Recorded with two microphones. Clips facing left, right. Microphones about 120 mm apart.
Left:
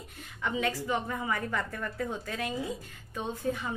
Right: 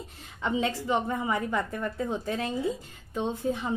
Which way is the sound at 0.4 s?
25° right (ahead or behind).